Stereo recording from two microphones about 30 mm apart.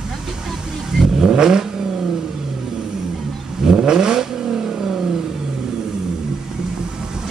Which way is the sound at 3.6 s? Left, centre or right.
Right.